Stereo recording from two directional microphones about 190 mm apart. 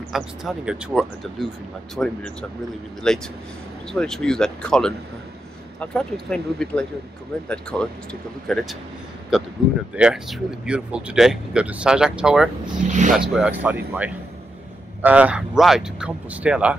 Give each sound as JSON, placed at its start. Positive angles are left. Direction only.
{"t": 0.1, "sound": "speech", "side_deg": 0}
{"t": 12.9, "sound": "speech", "side_deg": -40}
{"t": 13.2, "sound": "speech", "side_deg": -5}